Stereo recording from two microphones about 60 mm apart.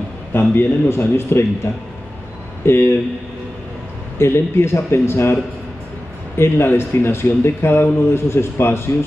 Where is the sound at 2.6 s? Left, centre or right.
Left.